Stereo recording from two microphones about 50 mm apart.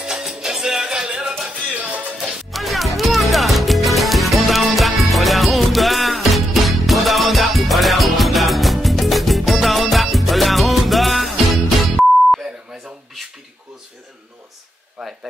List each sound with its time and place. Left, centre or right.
0.0 s music: centre
1.5 s music: right
2.5 s music: centre
15.0 s a sound: centre